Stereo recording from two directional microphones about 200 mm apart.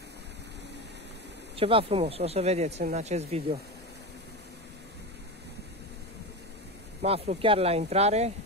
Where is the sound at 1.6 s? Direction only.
25° right (ahead or behind).